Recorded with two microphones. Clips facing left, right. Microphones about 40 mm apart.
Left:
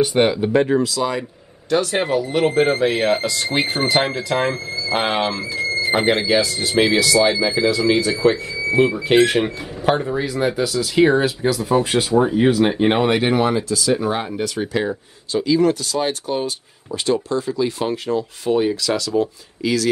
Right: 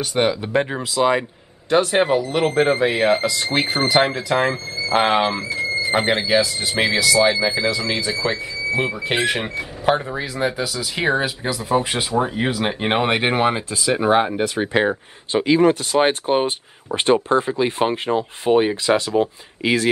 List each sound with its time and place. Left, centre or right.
0.0 s speech: centre
0.5 s speech: right
5.5 s a sound: centre
5.9 s speech: centre
13.0 s speech: right